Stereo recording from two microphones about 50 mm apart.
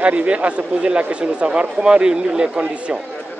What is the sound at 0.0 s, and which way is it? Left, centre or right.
A man's voice, right.